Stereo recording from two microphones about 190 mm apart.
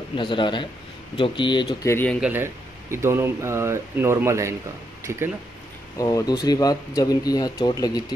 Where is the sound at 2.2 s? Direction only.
10° right (ahead or behind).